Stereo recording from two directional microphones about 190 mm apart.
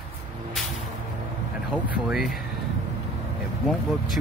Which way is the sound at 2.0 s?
Centre (ahead or behind).